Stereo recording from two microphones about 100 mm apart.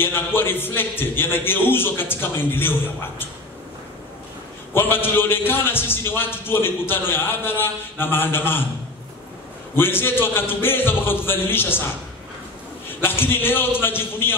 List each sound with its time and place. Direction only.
0.0 s a man's voice: 20° left (ahead or behind)
4.7 s a man's voice: 20° left (ahead or behind)
9.8 s a man's voice: 20° left (ahead or behind)
12.8 s a man's voice: 20° left (ahead or behind)